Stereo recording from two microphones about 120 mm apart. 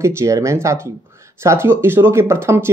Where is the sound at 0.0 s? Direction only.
25° right (ahead or behind).